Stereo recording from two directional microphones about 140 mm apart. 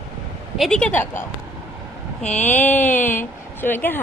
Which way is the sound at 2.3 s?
60° left (ahead or behind).